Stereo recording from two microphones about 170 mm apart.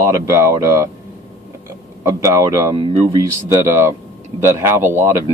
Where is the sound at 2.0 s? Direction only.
20° right (ahead or behind).